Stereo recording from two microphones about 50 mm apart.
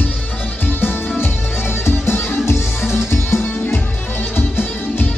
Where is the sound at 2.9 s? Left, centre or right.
Left.